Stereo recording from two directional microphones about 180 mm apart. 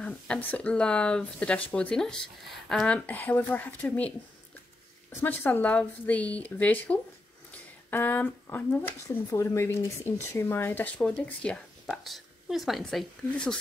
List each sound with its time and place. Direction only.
0.0 s speech: 5° left (ahead or behind)
5.1 s speech: 10° left (ahead or behind)